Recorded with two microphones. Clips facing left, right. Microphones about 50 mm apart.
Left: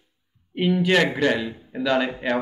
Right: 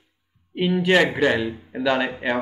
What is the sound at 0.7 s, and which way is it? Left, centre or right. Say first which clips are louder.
Speech: right 2 dB; centre.